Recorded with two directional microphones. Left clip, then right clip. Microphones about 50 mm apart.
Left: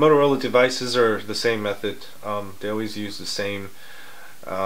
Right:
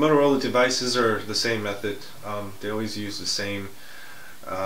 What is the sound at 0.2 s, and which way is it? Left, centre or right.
Speech, right.